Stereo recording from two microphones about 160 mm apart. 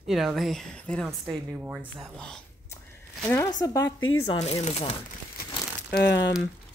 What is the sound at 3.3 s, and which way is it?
Speech, 20° left (ahead or behind).